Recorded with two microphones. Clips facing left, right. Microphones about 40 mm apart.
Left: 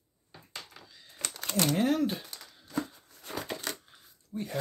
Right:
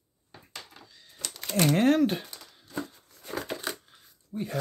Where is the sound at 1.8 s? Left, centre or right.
Right.